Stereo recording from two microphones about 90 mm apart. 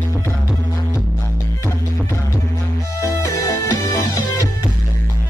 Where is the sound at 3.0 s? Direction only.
40° left (ahead or behind).